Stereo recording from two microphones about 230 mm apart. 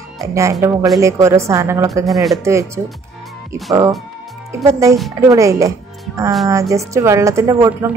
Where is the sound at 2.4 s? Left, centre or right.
Centre.